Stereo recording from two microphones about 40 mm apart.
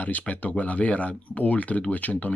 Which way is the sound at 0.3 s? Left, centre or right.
Left.